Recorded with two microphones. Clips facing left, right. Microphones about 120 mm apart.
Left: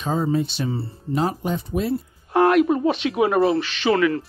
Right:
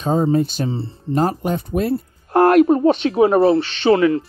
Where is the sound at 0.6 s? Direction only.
25° right (ahead or behind).